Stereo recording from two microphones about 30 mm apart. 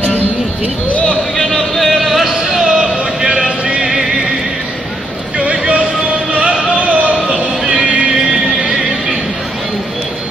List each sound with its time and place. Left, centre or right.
1.8 s music: centre
2.7 s a sound: right
3.4 s a sound: right
3.8 s music: centre
5.4 s vehicle: right
6.3 s music: right
7.6 s music: right